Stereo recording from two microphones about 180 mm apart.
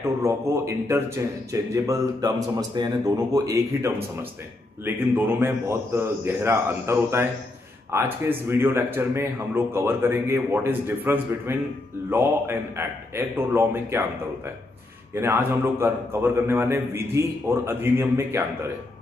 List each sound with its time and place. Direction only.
0.0 s speech: 15° right (ahead or behind)
15.1 s speech: 15° right (ahead or behind)